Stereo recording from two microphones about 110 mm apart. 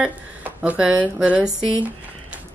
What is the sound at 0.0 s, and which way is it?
Speech, 15° right (ahead or behind).